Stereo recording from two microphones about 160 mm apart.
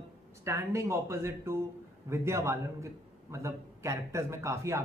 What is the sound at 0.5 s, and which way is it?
A man's voice, 15° right (ahead or behind).